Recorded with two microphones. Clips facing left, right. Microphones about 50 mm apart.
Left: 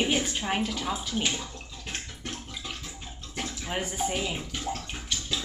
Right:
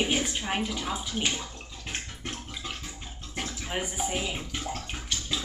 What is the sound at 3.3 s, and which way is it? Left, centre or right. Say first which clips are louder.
Bathtub: even; centre.